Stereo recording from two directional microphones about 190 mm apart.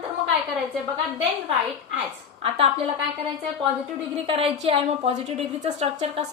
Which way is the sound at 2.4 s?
30° right (ahead or behind).